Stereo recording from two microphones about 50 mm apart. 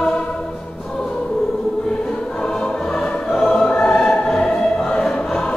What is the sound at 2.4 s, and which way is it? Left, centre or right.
Music, centre.